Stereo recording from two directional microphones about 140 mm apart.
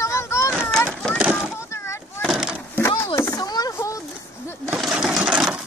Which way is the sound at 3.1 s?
20° left (ahead or behind).